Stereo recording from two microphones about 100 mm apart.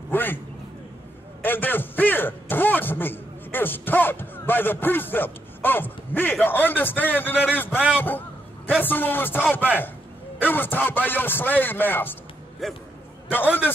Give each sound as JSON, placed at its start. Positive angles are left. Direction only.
{"t": 0.1, "sound": "a sound", "side_deg": 20}
{"t": 1.4, "sound": "a man's voice", "side_deg": 20}
{"t": 8.8, "sound": "a man's voice", "side_deg": 20}
{"t": 12.6, "sound": "speech", "side_deg": 0}
{"t": 13.3, "sound": "a man's voice", "side_deg": 20}